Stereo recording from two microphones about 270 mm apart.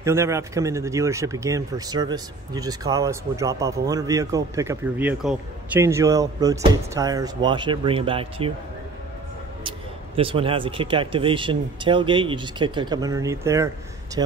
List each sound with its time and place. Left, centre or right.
0.0 s a man's voice: centre
9.6 s a man's voice: centre